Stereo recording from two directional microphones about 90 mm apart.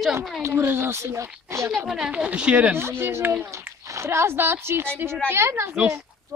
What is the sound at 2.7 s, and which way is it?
A woman's voice, 30° right (ahead or behind).